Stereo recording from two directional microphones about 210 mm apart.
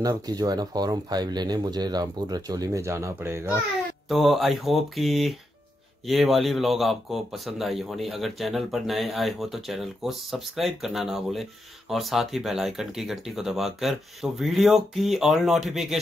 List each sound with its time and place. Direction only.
0.0 s speech: 20° right (ahead or behind)
4.1 s speech: centre (ahead or behind)